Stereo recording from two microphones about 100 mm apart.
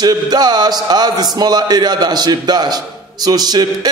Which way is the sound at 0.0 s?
45° right (ahead or behind).